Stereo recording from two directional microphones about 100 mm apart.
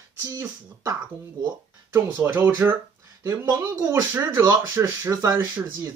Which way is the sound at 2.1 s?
25° right (ahead or behind).